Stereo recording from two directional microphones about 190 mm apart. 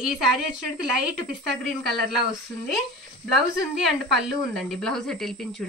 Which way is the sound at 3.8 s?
Centre (ahead or behind).